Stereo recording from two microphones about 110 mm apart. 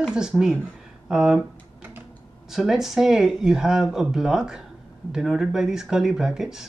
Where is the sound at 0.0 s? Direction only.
5° right (ahead or behind).